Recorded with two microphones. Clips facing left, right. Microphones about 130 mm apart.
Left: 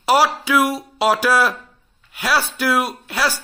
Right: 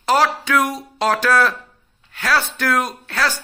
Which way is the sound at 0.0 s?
10° left (ahead or behind).